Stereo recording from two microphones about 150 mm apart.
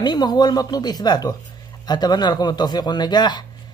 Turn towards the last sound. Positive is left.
turn(degrees=30)  # may be behind; listen again after turning